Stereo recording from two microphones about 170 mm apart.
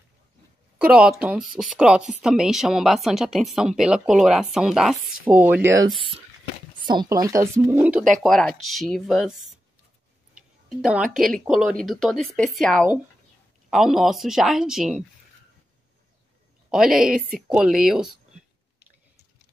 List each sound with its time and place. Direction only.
0.7 s a woman's voice: 5° right (ahead or behind)
5.9 s speech: 30° right (ahead or behind); by 8.0 s 10° right (ahead or behind)
8.1 s a woman's voice: centre (ahead or behind)
10.8 s a woman's voice: centre (ahead or behind)
16.7 s a woman's voice: 5° right (ahead or behind)